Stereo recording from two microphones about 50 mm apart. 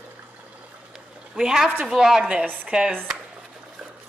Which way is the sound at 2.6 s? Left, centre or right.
Centre.